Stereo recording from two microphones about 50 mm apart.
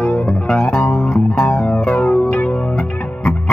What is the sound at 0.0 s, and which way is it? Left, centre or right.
Music, left.